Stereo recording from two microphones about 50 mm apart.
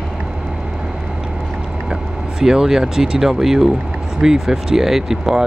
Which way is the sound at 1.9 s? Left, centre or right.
Centre.